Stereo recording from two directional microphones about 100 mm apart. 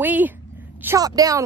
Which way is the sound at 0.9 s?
35° right (ahead or behind).